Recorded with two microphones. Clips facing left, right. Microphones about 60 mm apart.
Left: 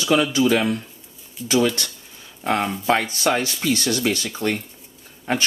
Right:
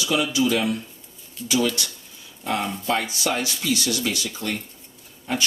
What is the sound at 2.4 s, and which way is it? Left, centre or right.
Speech, left.